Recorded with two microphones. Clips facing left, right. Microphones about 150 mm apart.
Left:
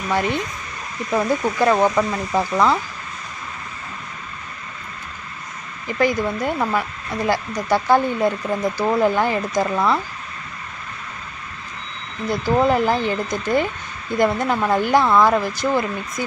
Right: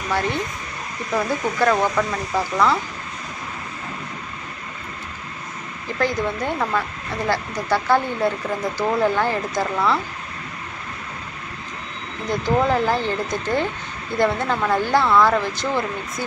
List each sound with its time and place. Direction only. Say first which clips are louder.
0.1 s speech: left 2 dB; 15° left (ahead or behind)
5.9 s speech: left 3 dB; 10° left (ahead or behind)
12.4 s speech: left 2 dB; 15° left (ahead or behind)